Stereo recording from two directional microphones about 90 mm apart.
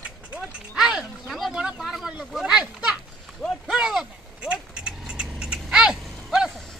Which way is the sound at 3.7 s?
5° right (ahead or behind).